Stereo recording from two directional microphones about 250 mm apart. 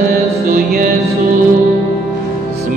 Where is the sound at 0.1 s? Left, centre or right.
Right.